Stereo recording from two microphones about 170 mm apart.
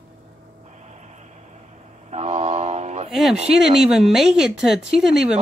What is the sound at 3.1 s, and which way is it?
Speech, centre (ahead or behind).